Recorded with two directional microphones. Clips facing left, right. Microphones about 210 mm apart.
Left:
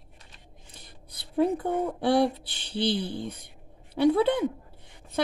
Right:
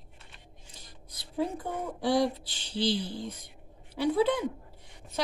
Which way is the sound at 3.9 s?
60° left (ahead or behind).